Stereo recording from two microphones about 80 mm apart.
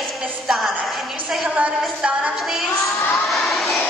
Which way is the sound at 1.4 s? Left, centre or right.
Centre.